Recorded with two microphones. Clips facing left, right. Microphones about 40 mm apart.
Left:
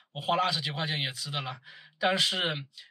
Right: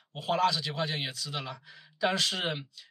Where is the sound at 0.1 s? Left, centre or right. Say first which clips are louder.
Even; left.